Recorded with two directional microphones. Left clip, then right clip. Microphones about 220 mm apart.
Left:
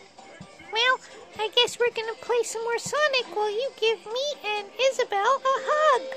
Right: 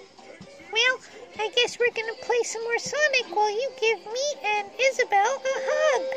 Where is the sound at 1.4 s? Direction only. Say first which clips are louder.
Even; centre (ahead or behind).